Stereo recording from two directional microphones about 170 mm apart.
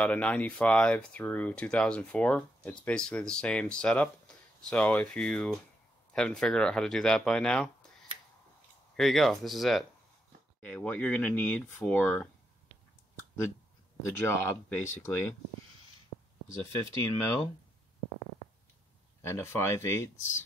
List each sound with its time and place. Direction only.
0.0 s speech: 5° left (ahead or behind)
8.9 s speech: centre (ahead or behind)
14.0 s speech: 15° left (ahead or behind)
19.2 s speech: 15° left (ahead or behind)